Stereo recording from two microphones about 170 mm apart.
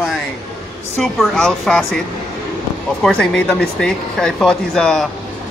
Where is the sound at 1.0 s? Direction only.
5° left (ahead or behind).